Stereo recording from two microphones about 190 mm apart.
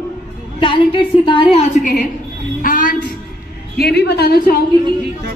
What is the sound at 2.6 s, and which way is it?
Music, 45° left (ahead or behind).